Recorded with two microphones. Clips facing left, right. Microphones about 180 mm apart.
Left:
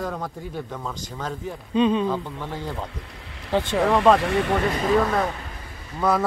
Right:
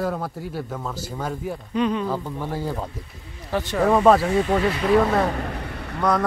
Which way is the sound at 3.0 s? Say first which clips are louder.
Even; 80° left.